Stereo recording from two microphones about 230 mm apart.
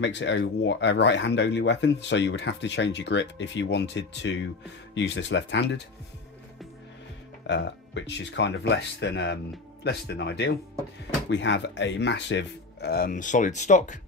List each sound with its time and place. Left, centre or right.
0.0 s speech: left
7.4 s speech: left